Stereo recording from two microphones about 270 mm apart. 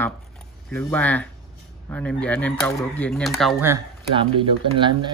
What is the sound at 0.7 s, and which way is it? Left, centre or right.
Speech, centre.